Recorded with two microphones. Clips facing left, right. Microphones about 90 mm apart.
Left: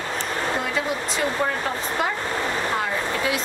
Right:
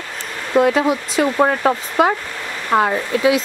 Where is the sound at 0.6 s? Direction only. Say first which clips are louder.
Right 10 dB; 65° right (ahead or behind).